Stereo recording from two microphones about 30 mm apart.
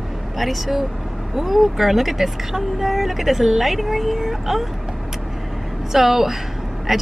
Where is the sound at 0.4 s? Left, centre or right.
Centre.